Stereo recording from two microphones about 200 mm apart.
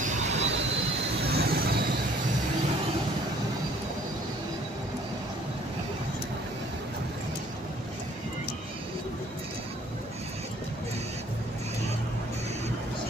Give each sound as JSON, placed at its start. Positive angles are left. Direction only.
{"t": 0.0, "sound": "vehicle", "side_deg": -35}
{"t": 1.3, "sound": "train", "side_deg": -50}